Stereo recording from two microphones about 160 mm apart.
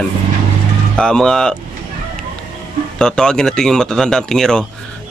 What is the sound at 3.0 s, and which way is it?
Speech, 5° left (ahead or behind).